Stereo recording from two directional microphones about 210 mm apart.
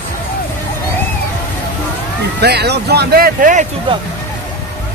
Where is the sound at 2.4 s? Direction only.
50° right (ahead or behind).